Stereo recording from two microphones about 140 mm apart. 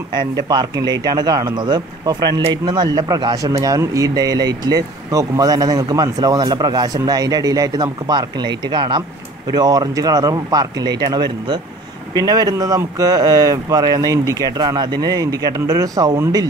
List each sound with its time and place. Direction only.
0.1 s speech: 30° right (ahead or behind)